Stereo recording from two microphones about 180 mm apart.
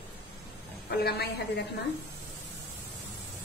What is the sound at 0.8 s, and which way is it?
Speech, 60° left (ahead or behind).